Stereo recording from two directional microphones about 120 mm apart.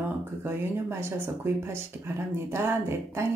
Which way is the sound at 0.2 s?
20° right (ahead or behind).